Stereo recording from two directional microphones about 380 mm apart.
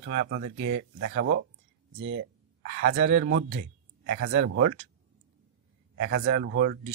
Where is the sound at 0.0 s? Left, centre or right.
Right.